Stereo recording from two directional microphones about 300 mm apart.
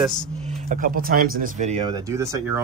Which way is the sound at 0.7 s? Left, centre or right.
Right.